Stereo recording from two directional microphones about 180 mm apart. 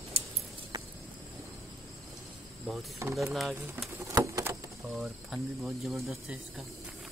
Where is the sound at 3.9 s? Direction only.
15° right (ahead or behind).